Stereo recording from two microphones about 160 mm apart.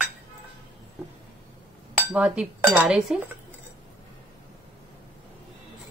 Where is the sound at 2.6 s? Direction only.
20° right (ahead or behind).